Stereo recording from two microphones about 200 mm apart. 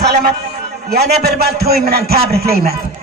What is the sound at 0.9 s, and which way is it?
A man's voice, 50° right (ahead or behind).